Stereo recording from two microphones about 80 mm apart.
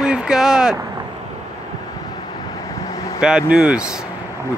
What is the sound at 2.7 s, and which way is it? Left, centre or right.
Vehicle, left.